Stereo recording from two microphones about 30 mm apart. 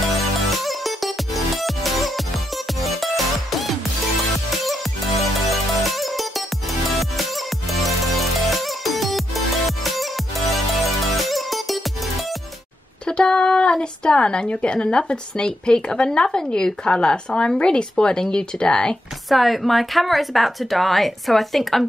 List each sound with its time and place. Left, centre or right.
0.0 s music: centre
13.0 s a sound: left
14.5 s speech: left
19.2 s speech: centre